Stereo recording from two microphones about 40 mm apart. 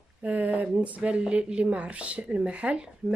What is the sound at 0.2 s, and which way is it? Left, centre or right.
Speech, right.